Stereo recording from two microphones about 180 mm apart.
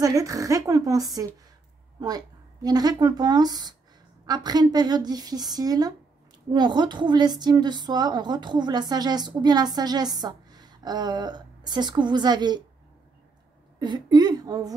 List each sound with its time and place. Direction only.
0.0 s a woman's voice: 20° right (ahead or behind)
13.7 s a woman's voice: 25° right (ahead or behind)